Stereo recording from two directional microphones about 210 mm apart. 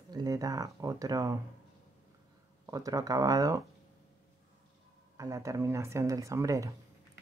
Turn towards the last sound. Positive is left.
turn(degrees=-15)  # may be behind; listen again after turning